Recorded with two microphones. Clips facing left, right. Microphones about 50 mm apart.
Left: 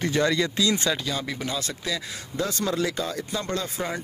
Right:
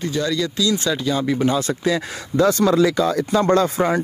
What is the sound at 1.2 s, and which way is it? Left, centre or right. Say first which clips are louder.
Speech: right 11 dB; centre.